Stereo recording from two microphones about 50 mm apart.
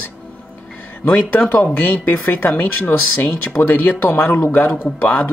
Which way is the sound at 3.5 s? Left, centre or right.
Left.